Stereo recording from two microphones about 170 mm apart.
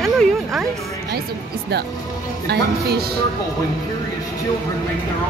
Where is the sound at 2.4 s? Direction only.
75° right (ahead or behind).